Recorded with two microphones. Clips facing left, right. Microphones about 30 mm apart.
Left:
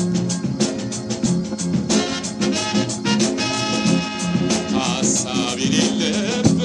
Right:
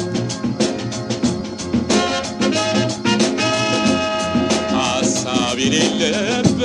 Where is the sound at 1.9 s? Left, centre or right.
Centre.